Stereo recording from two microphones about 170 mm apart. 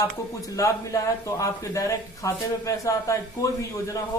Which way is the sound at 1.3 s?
20° left (ahead or behind).